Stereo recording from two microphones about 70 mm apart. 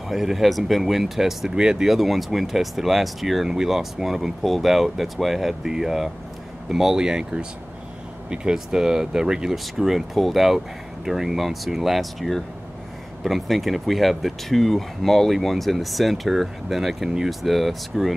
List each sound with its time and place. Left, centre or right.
0.1 s speech: centre
8.3 s speech: centre